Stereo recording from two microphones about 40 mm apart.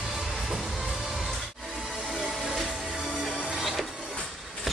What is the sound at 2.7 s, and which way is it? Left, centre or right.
Music, centre.